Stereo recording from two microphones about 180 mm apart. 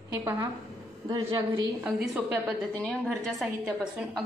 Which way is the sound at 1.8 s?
Centre (ahead or behind).